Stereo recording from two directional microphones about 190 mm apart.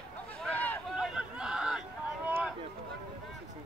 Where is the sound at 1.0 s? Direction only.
5° right (ahead or behind).